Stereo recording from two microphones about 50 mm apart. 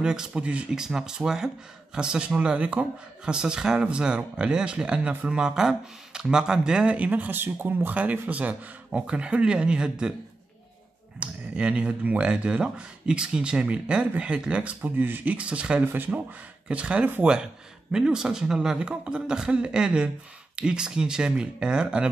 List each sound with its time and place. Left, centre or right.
0.0 s a man's voice: centre
0.7 s a man's voice: centre
7.0 s speech: right
7.9 s speech: right
11.1 s speech: right
14.8 s speech: right
15.3 s speech: right
15.8 s speech: right
16.6 s a man's voice: right